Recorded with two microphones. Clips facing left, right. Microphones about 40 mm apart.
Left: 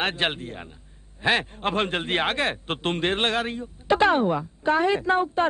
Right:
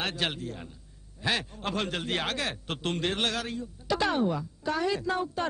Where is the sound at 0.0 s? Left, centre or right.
Left.